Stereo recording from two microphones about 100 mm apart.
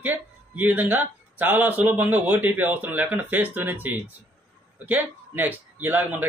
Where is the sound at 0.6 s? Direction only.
20° right (ahead or behind).